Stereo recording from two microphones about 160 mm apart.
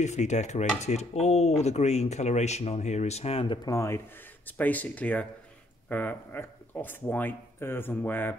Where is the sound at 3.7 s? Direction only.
20° left (ahead or behind).